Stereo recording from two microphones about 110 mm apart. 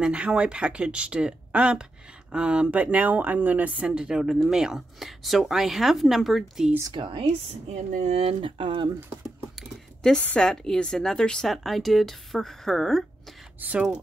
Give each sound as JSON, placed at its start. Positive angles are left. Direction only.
{"t": 0.0, "sound": "speech", "side_deg": -10}
{"t": 6.9, "sound": "speech", "side_deg": -50}
{"t": 7.7, "sound": "speech", "side_deg": -90}
{"t": 8.2, "sound": "speech", "side_deg": -50}
{"t": 9.6, "sound": "speech", "side_deg": 5}
{"t": 13.6, "sound": "speech", "side_deg": -15}